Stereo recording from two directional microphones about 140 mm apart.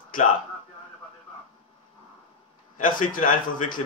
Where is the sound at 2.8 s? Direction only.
75° left (ahead or behind).